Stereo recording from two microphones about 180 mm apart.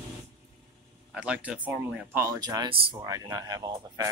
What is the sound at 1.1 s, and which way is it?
Speech, 5° right (ahead or behind).